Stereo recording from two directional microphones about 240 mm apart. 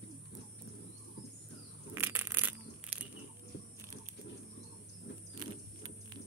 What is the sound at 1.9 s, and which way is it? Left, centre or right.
Crushing, centre.